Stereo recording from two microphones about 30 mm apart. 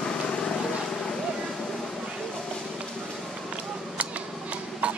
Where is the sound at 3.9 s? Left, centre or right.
Right.